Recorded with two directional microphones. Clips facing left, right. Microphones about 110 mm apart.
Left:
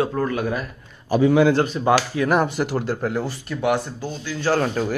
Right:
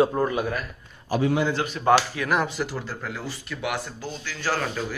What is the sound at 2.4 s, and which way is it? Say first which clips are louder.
Speech: left 5 dB; 55° left (ahead or behind).